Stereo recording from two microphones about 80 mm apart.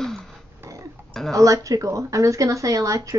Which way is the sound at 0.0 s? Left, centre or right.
Centre.